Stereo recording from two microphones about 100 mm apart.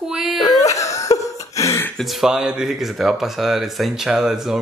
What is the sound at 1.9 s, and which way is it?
Speech, centre (ahead or behind).